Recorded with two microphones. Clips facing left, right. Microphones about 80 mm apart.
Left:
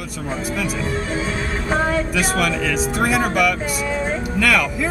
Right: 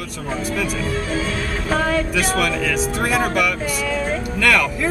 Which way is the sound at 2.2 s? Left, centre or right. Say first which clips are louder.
Even; centre.